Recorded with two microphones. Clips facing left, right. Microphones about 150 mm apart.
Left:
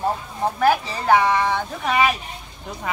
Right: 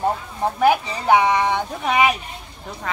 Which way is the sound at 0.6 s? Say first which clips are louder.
Right 2 dB; 15° right (ahead or behind).